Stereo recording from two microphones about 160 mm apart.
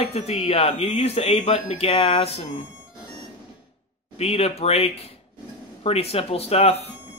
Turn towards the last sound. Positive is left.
turn(degrees=40)  # may be behind; listen again after turning